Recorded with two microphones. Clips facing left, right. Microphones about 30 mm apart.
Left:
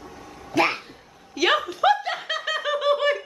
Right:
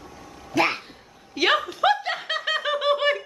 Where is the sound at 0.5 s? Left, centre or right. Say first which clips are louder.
Left 1 dB; centre.